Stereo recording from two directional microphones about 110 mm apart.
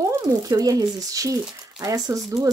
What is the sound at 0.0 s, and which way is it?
Speech, 30° right (ahead or behind).